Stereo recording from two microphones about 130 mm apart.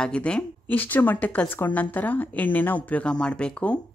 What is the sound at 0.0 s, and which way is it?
Speech, 10° left (ahead or behind).